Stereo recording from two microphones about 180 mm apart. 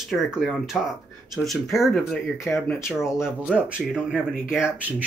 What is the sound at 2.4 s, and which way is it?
Speech, 15° left (ahead or behind).